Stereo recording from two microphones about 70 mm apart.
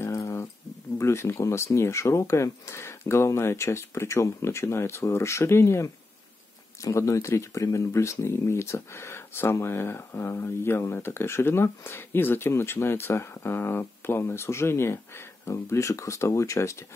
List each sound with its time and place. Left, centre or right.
0.0 s a sound: left
0.9 s speech: left
6.8 s speech: left